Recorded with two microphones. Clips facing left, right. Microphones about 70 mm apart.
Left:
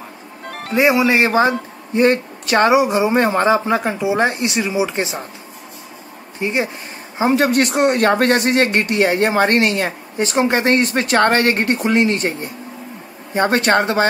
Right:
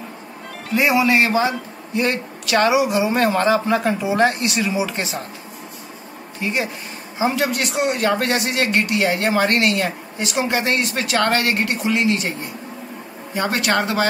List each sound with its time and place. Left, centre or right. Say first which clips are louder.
1.0 s speech: left 3 dB; left
6.4 s speech: left 3 dB; left
7.2 s speech: left 5 dB; left
13.3 s speech: left 5 dB; left